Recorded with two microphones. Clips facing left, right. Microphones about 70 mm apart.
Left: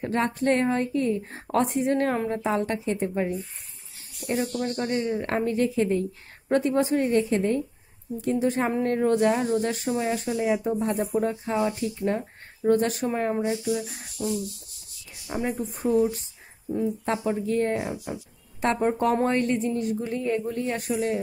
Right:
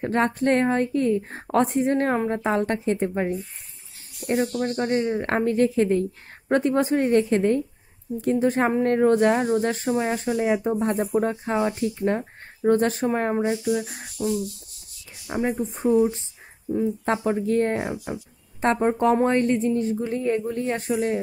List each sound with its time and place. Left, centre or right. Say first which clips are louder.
0.0 s speech: right 3 dB; right
15.3 s speech: right 3 dB; centre; by 17.9 s right
18.6 s speech: right 3 dB; right